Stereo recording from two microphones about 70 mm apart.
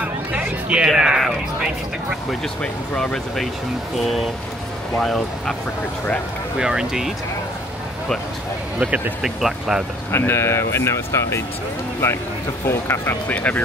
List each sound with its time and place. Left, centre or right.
0.0 s a sound: centre
2.6 s speech: centre
4.0 s speech: centre
6.6 s speech: centre
8.7 s speech: right
9.2 s speech: centre
10.1 s speech: left
12.6 s speech: left
13.3 s speech: left